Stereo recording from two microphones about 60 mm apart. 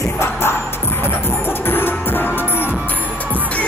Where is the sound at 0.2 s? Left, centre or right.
Left.